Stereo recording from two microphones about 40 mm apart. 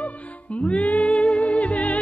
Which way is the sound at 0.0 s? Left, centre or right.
Left.